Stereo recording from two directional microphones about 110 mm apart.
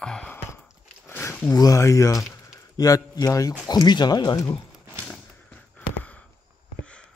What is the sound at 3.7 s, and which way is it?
Speech, 40° left (ahead or behind).